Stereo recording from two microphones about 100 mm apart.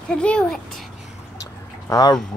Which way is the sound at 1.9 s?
40° left (ahead or behind).